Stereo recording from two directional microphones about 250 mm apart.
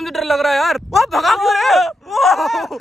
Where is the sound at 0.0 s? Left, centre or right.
Centre.